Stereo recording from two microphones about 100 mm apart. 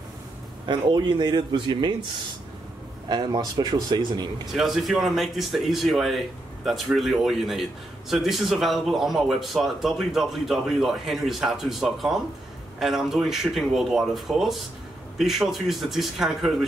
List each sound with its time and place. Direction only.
0.7 s a man's voice: 50° right (ahead or behind)
3.1 s a man's voice: 45° right (ahead or behind)
4.5 s speech: centre (ahead or behind)